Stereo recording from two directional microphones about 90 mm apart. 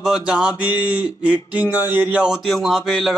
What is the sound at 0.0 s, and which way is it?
A man's voice, 5° right (ahead or behind).